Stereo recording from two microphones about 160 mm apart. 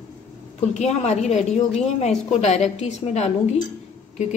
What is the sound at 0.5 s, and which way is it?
Speech, 45° left (ahead or behind).